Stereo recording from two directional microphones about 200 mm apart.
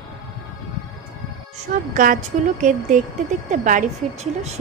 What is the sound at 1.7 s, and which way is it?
A woman's voice, 40° right (ahead or behind).